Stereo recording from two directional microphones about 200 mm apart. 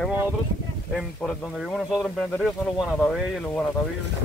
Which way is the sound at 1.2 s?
5° left (ahead or behind).